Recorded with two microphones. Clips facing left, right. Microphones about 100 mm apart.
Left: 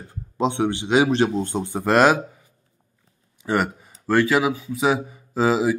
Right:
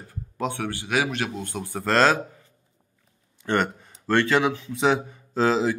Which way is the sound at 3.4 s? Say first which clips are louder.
Left 1 dB; 5° left (ahead or behind).